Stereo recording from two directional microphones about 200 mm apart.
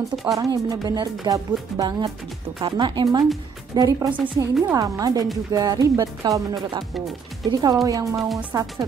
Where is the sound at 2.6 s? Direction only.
20° right (ahead or behind).